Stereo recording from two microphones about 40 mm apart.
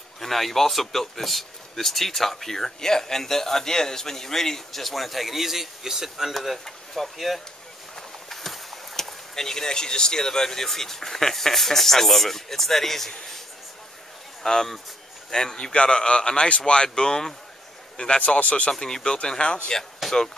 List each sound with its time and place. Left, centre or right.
0.2 s speech: centre
14.4 s speech: centre; by 18.7 s left
18.7 s speech: centre
20.0 s speech: centre